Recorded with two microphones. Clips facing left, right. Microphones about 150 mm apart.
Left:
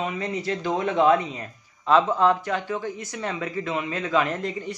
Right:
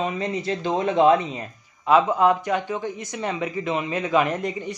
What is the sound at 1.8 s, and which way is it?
Speech, 10° right (ahead or behind).